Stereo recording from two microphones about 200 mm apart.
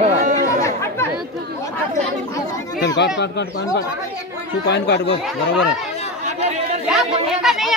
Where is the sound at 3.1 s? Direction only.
60° left (ahead or behind).